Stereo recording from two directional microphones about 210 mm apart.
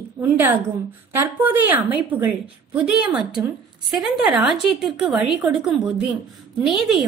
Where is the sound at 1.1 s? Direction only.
10° right (ahead or behind).